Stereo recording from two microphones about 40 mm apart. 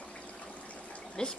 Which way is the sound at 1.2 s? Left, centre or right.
Centre.